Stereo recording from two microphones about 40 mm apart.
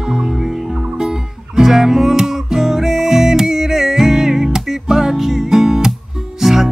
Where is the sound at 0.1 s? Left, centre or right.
Centre.